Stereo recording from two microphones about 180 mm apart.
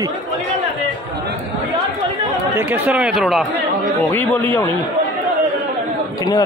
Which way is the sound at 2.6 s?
10° right (ahead or behind).